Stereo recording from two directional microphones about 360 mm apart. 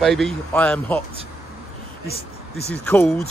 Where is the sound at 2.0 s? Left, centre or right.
Left.